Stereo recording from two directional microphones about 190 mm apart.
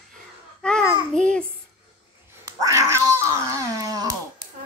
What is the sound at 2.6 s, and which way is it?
Cat, 15° right (ahead or behind).